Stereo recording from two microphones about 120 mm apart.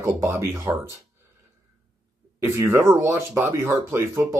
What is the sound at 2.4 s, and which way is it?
Speech, 20° right (ahead or behind).